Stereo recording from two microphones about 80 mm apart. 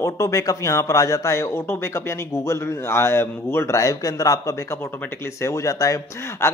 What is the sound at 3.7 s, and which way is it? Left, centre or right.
A man's voice, left.